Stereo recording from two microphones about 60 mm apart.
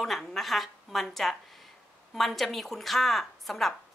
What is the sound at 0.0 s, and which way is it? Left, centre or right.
A woman's voice, centre.